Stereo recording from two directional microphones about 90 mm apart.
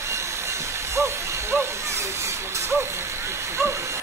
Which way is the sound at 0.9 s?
30° right (ahead or behind).